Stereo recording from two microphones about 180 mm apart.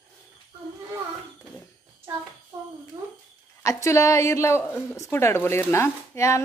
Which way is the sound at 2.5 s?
20° right (ahead or behind).